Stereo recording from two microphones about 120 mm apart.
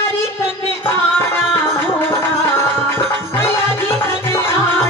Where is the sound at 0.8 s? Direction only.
20° left (ahead or behind).